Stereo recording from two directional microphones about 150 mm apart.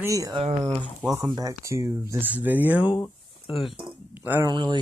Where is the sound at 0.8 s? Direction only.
10° right (ahead or behind).